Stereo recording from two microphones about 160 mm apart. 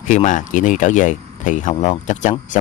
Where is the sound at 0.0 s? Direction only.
50° left (ahead or behind).